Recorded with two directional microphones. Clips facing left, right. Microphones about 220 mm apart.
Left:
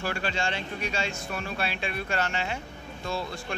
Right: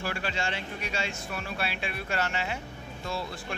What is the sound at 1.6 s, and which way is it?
Speech, 5° right (ahead or behind).